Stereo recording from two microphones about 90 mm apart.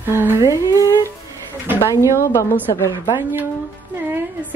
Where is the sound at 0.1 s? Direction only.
25° right (ahead or behind).